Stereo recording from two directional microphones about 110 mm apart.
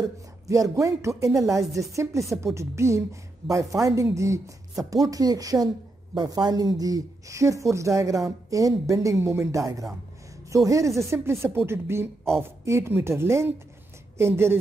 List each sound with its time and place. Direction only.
0.0 s speech: 30° right (ahead or behind)